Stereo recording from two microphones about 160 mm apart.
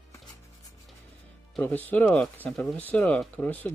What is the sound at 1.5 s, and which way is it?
Speech, 10° left (ahead or behind).